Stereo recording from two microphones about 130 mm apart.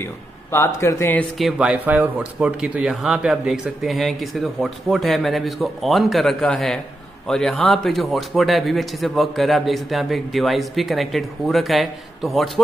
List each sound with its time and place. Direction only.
0.0 s a man's voice: 20° left (ahead or behind)
1.4 s speech: 5° right (ahead or behind)